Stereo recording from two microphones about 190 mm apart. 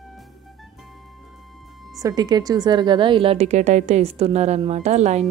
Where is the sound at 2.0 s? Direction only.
20° right (ahead or behind); by 5.2 s 35° right (ahead or behind).